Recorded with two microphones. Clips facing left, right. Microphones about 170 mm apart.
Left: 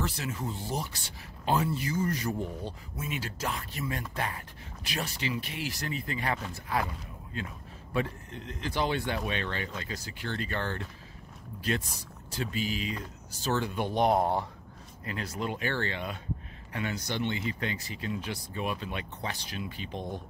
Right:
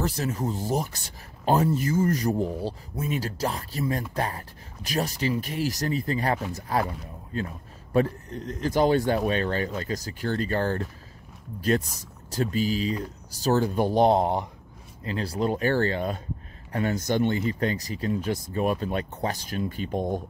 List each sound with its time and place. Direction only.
0.0 s speech: 40° right (ahead or behind)
12.3 s speech: 40° right (ahead or behind)
14.2 s speech: 20° right (ahead or behind)
15.0 s speech: 35° right (ahead or behind)